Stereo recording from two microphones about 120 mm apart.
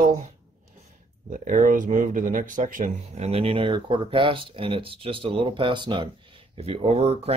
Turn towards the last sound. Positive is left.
turn(degrees=-60)  # may be behind; listen again after turning